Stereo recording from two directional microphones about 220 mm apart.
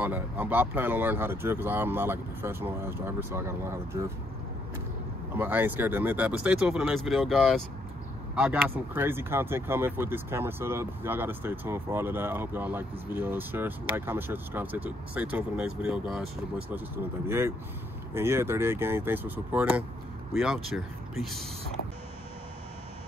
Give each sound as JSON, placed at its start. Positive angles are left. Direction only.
{"t": 0.0, "sound": "speech", "side_deg": -10}
{"t": 5.3, "sound": "speech", "side_deg": -10}